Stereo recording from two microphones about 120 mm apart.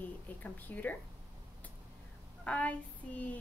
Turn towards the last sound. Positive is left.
turn(degrees=10)  # may be behind; listen again after turning